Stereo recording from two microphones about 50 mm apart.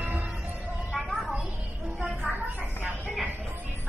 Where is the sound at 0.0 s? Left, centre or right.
Right.